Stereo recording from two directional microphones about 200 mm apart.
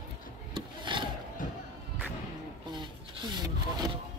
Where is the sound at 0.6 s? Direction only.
25° right (ahead or behind).